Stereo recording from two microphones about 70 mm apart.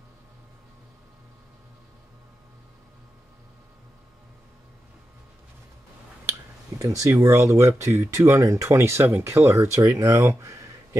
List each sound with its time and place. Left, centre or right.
6.8 s speech: right